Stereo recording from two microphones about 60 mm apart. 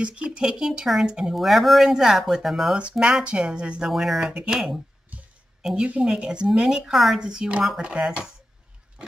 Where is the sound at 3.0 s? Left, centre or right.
Centre.